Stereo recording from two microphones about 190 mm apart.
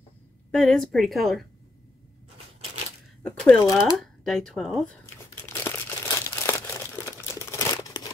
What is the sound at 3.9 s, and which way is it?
A woman's voice, centre (ahead or behind).